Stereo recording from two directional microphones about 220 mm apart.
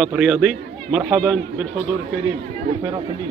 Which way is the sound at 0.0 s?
Centre (ahead or behind).